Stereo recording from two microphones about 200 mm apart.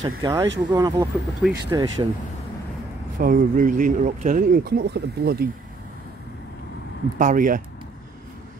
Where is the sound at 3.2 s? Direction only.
45° right (ahead or behind).